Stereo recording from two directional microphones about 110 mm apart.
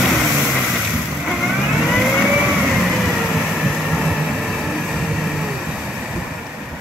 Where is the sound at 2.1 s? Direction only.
5° left (ahead or behind).